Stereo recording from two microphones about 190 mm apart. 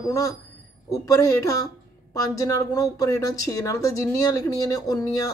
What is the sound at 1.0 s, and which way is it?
Speech, 15° left (ahead or behind).